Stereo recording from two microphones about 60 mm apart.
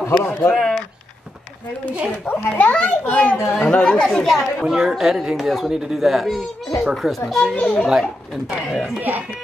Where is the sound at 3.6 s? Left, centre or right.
Centre.